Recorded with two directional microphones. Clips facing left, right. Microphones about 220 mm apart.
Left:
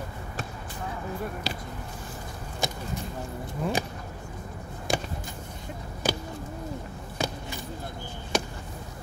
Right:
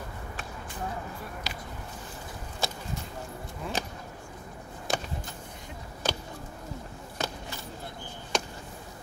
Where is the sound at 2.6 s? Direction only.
15° left (ahead or behind).